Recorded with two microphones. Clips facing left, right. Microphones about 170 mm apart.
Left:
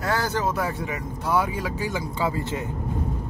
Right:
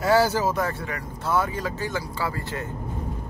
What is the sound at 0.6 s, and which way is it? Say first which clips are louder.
Speech: even; 15° left (ahead or behind).